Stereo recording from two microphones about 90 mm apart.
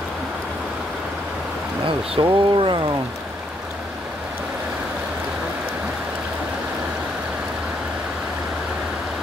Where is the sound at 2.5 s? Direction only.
65° right (ahead or behind).